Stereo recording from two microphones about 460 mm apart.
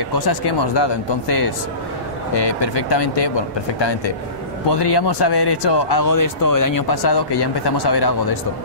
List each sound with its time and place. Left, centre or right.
0.1 s speech: left
2.3 s speech: left
4.6 s speech: left